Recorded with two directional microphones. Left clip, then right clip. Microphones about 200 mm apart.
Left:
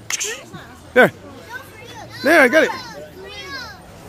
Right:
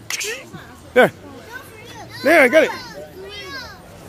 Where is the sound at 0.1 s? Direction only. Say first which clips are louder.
Even; 5° left (ahead or behind).